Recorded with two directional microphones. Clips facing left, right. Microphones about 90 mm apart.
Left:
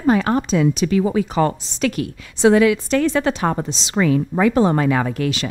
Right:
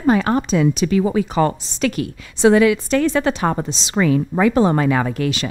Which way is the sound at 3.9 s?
20° right (ahead or behind).